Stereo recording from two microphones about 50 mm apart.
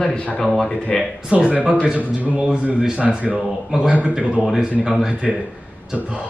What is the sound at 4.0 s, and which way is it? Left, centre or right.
Speech, right.